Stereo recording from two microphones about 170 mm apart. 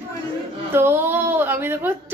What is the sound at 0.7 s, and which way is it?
A woman's voice, 15° right (ahead or behind).